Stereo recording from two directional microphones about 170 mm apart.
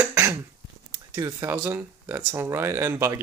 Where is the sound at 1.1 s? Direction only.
20° right (ahead or behind).